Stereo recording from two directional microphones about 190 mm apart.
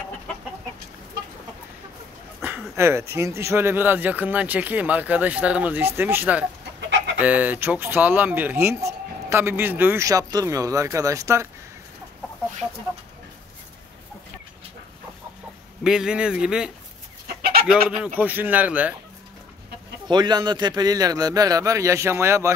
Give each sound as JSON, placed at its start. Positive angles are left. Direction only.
{"t": 2.4, "sound": "speech", "side_deg": -10}
{"t": 15.8, "sound": "speech", "side_deg": -5}
{"t": 17.4, "sound": "chicken", "side_deg": -55}
{"t": 17.6, "sound": "speech", "side_deg": -5}
{"t": 20.1, "sound": "speech", "side_deg": -20}